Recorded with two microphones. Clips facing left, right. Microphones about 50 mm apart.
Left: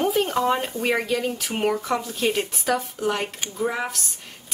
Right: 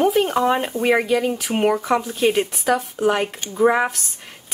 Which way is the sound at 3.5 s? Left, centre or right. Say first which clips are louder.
Right 10 dB; right.